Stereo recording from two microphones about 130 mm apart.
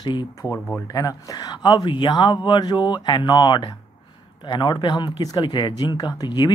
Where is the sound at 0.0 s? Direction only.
35° left (ahead or behind).